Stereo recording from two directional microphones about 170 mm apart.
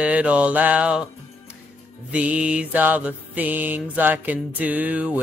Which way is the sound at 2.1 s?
5° right (ahead or behind).